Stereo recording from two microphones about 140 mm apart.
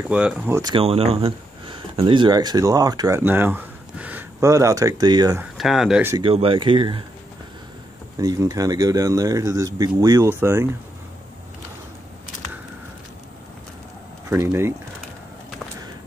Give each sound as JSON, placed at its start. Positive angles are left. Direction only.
{"t": 0.1, "sound": "speech", "side_deg": -10}
{"t": 0.5, "sound": "speech", "side_deg": -20}
{"t": 0.7, "sound": "speech", "side_deg": -45}
{"t": 3.2, "sound": "a sound", "side_deg": -15}
{"t": 4.4, "sound": "speech", "side_deg": -20}
{"t": 5.4, "sound": "speech", "side_deg": 0}
{"t": 6.3, "sound": "speech", "side_deg": -40}
{"t": 8.2, "sound": "speech", "side_deg": -25}
{"t": 14.3, "sound": "speech", "side_deg": -20}